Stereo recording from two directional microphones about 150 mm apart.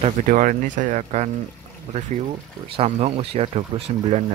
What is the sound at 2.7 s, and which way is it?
Speech, 45° right (ahead or behind).